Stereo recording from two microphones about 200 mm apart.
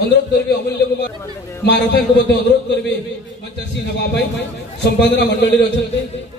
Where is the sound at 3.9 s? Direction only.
55° left (ahead or behind).